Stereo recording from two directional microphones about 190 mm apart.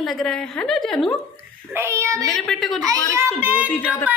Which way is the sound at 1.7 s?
15° right (ahead or behind).